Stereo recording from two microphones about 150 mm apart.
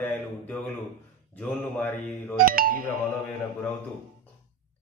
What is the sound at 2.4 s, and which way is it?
Speech, 75° right (ahead or behind).